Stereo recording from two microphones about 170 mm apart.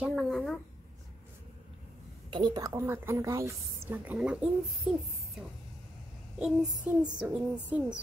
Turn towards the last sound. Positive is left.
turn(degrees=-10)  # may be behind; listen again after turning